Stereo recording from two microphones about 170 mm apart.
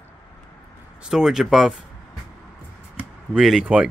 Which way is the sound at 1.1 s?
Centre (ahead or behind).